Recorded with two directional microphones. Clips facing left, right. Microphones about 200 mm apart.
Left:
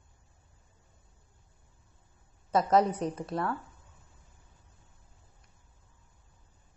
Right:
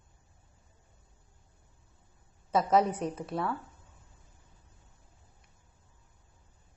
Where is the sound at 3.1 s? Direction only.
Centre (ahead or behind).